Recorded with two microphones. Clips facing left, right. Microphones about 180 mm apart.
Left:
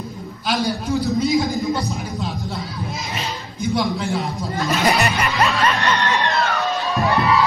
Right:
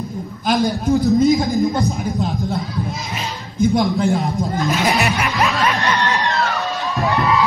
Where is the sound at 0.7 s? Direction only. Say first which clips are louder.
Right 5 dB; 50° right (ahead or behind).